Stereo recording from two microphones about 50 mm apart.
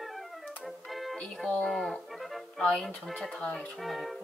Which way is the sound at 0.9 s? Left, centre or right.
Centre.